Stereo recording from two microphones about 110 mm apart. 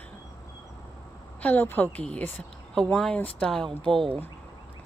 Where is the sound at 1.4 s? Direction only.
15° left (ahead or behind).